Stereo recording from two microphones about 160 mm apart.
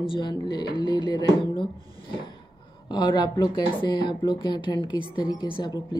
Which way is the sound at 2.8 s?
25° left (ahead or behind).